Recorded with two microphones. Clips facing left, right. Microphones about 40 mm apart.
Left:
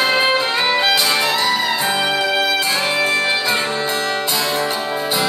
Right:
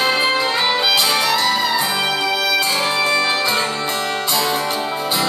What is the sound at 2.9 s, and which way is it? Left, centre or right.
Music, left.